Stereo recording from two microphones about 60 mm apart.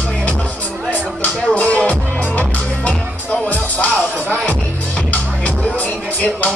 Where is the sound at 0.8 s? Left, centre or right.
Left.